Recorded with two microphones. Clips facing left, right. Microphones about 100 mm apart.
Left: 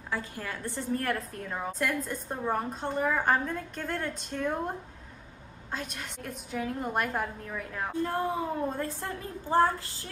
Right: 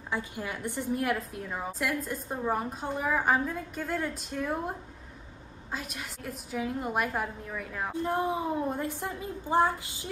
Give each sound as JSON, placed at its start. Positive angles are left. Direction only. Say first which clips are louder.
{"t": 0.1, "sound": "a woman's voice", "louder": "right 1 dB", "side_deg": -15}
{"t": 7.9, "sound": "a woman's voice", "louder": "right 1 dB", "side_deg": -20}